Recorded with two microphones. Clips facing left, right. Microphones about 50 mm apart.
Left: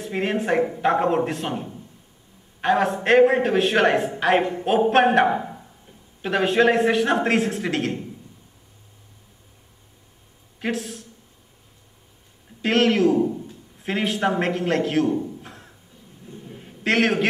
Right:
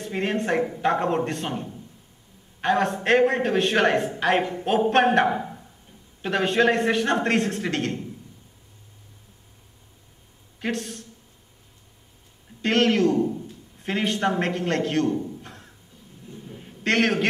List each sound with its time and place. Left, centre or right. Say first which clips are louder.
0.0 s a man's voice: left 2 dB; centre
10.6 s a man's voice: left 2 dB; centre
12.6 s a man's voice: left 2 dB; centre
15.2 s a sound: left 1 dB; centre